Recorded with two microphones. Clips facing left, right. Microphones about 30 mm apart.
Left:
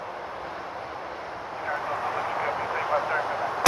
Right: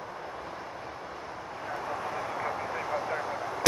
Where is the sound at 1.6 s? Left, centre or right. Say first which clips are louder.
Left 6 dB; left.